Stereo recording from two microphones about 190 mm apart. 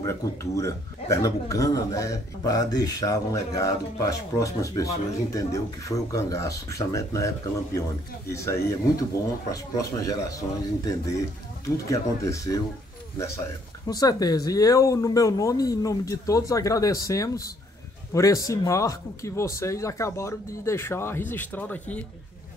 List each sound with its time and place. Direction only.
0.0 s speech: 15° left (ahead or behind)
13.8 s speech: 20° left (ahead or behind)